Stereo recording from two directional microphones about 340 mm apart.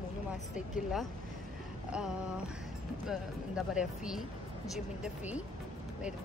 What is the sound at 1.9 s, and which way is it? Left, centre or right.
Speech, centre.